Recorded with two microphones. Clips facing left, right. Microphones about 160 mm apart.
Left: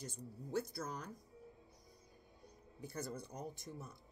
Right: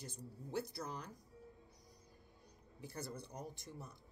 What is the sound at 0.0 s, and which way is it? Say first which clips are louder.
Speech: left 2 dB; 45° left (ahead or behind).